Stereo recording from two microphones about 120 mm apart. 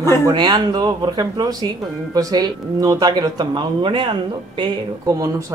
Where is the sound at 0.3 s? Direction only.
40° right (ahead or behind).